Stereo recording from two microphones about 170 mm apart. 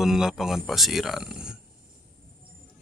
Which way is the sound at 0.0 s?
5° right (ahead or behind).